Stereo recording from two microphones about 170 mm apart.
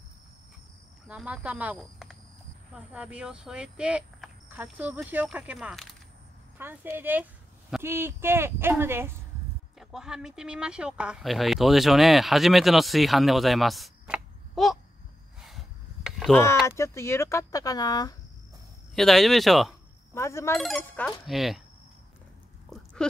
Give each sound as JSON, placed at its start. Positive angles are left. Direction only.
{"t": 1.0, "sound": "speech", "side_deg": -5}
{"t": 9.8, "sound": "speech", "side_deg": -5}
{"t": 15.4, "sound": "a sound", "side_deg": 0}
{"t": 16.3, "sound": "speech", "side_deg": 15}
{"t": 18.9, "sound": "speech", "side_deg": 0}
{"t": 20.2, "sound": "speech", "side_deg": 15}
{"t": 20.5, "sound": "speech", "side_deg": 5}